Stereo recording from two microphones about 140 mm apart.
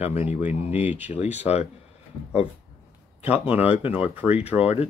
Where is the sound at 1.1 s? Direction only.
50° left (ahead or behind).